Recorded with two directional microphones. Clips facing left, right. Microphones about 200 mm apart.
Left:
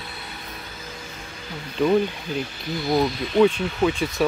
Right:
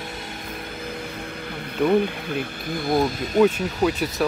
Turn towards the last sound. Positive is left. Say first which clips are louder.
# even
turn(degrees=-5)  # may be behind; listen again after turning